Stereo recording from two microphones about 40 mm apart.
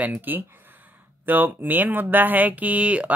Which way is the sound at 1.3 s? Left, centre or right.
Right.